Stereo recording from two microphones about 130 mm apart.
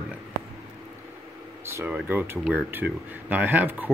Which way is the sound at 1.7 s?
20° right (ahead or behind).